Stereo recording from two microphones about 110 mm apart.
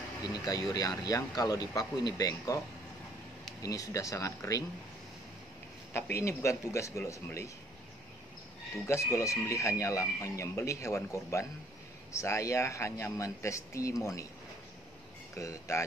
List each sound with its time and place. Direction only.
0.3 s speech: 35° left (ahead or behind)
3.6 s speech: 30° left (ahead or behind)
5.9 s speech: 20° left (ahead or behind)
8.8 s speech: 25° left (ahead or behind)
15.3 s speech: 30° left (ahead or behind)